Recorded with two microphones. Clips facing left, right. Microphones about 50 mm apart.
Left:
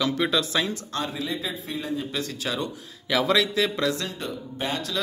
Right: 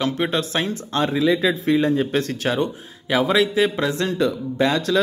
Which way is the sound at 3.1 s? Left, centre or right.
Right.